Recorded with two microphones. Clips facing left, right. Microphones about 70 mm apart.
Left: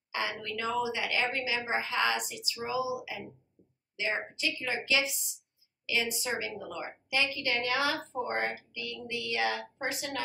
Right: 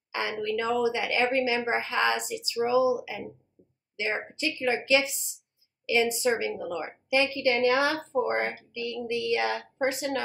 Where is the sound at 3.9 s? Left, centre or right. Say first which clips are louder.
Right 3 dB; right.